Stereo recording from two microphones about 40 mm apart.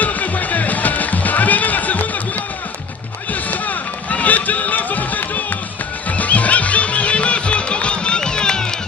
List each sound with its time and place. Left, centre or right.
0.0 s music: left
3.3 s run: left
6.0 s music: left; by 8.7 s centre